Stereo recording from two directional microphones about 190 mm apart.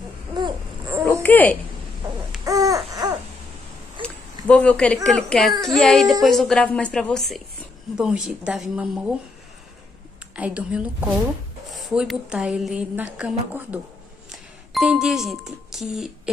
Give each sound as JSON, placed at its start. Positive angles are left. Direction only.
{"t": 1.2, "sound": "speech", "side_deg": 10}
{"t": 2.4, "sound": "a sound", "side_deg": -15}
{"t": 4.5, "sound": "a woman's voice", "side_deg": 5}
{"t": 10.3, "sound": "a woman's voice", "side_deg": -5}